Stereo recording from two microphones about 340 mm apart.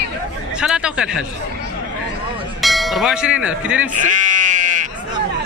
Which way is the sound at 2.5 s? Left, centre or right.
Centre.